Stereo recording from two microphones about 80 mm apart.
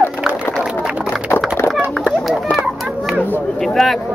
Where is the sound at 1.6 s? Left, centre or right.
Left.